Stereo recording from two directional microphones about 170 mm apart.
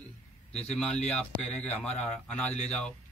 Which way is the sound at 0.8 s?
5° left (ahead or behind).